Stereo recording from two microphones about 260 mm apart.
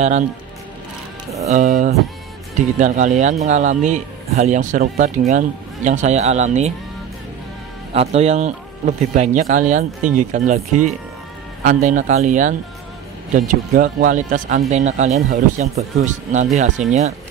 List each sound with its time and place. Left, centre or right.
1.5 s speech: right
7.9 s speech: right